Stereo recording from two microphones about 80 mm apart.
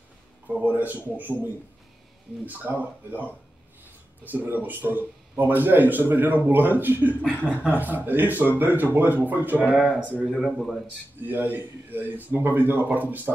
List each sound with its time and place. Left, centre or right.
0.6 s speech: right
10.2 s speech: centre
11.1 s speech: right